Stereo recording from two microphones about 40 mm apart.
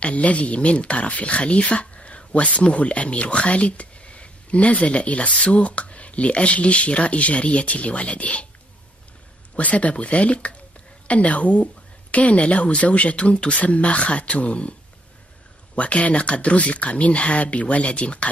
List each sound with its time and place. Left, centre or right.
0.0 s speech: left
9.6 s speech: left